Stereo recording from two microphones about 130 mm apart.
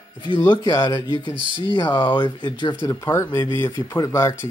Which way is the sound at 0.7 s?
25° left (ahead or behind).